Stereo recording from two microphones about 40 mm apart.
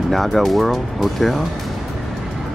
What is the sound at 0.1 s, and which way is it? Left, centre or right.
Speech, centre.